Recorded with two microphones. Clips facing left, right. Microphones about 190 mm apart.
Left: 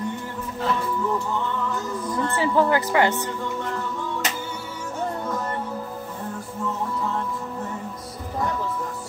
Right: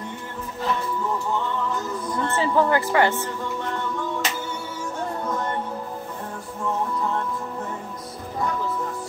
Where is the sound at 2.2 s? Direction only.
15° left (ahead or behind).